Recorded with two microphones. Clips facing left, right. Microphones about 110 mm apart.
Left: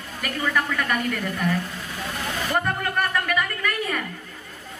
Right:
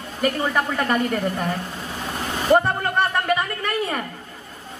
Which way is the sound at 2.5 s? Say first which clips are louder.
Right 8 dB; 30° right (ahead or behind).